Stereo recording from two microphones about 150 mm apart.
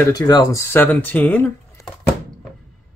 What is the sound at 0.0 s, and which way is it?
Speech, 25° left (ahead or behind).